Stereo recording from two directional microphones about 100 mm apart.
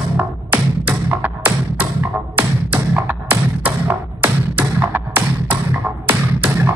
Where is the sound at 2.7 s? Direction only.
15° right (ahead or behind).